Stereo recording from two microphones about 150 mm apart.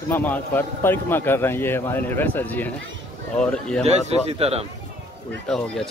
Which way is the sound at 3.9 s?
45° right (ahead or behind).